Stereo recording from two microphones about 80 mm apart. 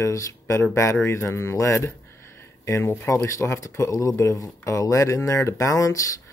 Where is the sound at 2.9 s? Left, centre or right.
Left.